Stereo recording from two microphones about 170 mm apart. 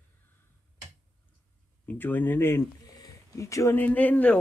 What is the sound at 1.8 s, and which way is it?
Speech, 10° left (ahead or behind).